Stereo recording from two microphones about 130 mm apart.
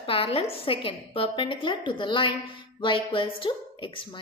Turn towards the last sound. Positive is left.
turn(degrees=40)  # may be behind; listen again after turning